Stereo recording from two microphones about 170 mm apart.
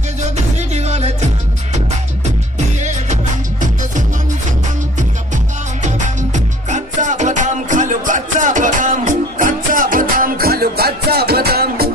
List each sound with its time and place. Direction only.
0.2 s music: 45° right (ahead or behind)
2.8 s music: 45° right (ahead or behind)
5.9 s music: 45° right (ahead or behind); by 11.9 s 65° right (ahead or behind)